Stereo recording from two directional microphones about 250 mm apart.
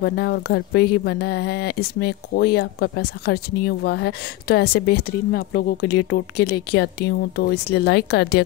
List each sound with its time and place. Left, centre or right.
0.0 s speech: left